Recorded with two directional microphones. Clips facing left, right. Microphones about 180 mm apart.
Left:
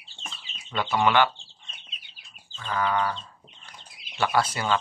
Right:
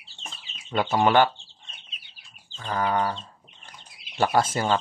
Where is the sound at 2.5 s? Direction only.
40° right (ahead or behind).